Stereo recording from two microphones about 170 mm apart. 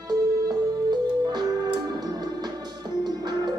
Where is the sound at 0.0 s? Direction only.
25° right (ahead or behind).